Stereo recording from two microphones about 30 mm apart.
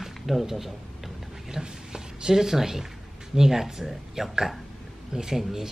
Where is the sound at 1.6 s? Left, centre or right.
Right.